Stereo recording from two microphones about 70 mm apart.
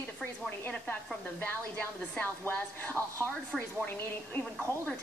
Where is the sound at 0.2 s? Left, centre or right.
Left.